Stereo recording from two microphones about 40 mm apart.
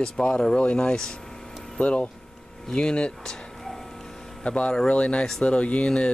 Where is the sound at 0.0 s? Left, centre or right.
Left.